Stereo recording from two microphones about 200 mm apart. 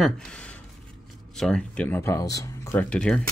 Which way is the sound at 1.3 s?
5° left (ahead or behind).